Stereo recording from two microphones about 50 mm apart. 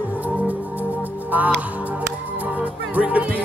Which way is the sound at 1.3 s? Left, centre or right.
Right.